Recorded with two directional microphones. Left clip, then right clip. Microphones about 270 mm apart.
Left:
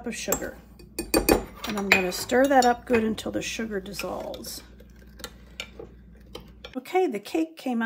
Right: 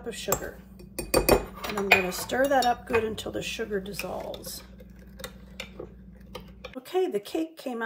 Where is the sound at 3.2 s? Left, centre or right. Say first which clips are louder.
Left 2 dB; left.